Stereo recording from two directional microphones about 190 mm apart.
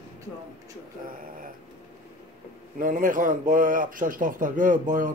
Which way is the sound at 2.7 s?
45° right (ahead or behind).